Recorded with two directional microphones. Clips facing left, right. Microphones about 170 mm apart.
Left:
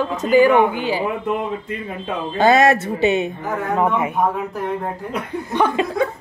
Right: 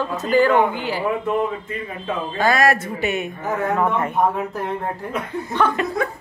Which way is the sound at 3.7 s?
10° left (ahead or behind).